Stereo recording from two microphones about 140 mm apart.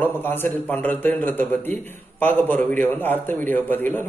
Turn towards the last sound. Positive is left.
turn(degrees=15)  # may be behind; listen again after turning